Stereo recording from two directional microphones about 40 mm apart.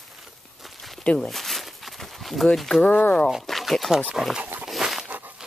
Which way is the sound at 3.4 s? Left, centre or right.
Centre.